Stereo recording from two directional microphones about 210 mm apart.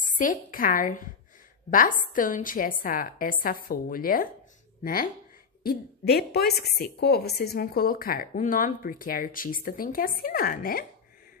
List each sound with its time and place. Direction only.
0.2 s a woman's voice: 40° left (ahead or behind)